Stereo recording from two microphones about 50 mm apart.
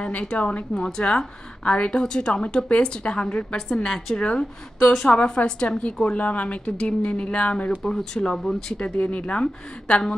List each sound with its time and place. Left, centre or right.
0.0 s a woman's voice: left
7.8 s speech: centre
8.7 s a woman's voice: left